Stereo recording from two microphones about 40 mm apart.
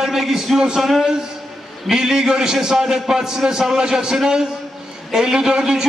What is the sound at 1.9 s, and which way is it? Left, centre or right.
A man's voice, centre.